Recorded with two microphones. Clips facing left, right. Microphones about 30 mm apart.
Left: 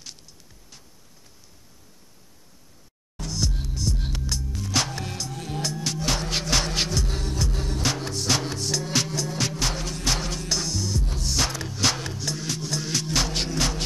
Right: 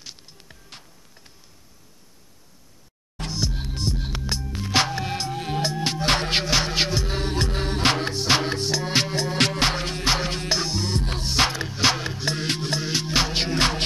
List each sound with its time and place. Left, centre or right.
0.3 s music: right
3.3 s music: right
3.6 s music: right
5.1 s music: right
6.4 s music: right
8.1 s music: right
10.9 s music: right
11.2 s music: right
12.3 s music: right
12.8 s music: right
13.6 s music: right